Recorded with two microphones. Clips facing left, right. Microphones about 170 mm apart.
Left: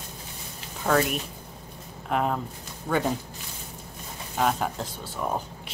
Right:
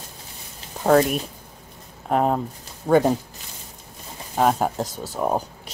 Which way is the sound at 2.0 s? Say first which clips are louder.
Right 6 dB; 40° right (ahead or behind).